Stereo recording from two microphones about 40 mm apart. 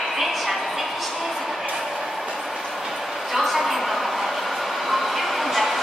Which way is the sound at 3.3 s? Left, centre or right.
Centre.